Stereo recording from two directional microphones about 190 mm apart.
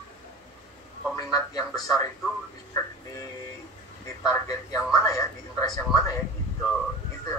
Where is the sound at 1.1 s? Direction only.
15° left (ahead or behind).